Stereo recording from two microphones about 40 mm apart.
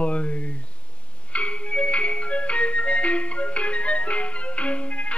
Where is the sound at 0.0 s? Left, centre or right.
Left.